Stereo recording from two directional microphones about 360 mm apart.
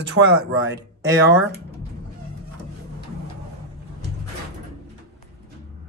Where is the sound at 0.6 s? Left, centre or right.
Centre.